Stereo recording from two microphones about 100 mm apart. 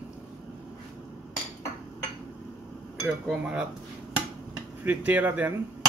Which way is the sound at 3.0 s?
5° right (ahead or behind).